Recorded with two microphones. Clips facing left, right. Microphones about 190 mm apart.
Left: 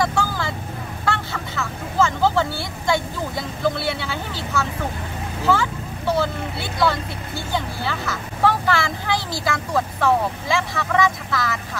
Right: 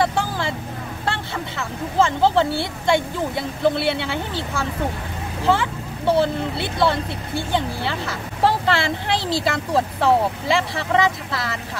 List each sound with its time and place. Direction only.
0.0 s vehicle: 30° right (ahead or behind)
2.0 s speech: 25° right (ahead or behind)